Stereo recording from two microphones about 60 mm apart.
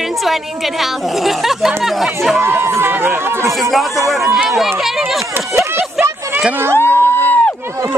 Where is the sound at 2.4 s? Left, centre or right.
Right.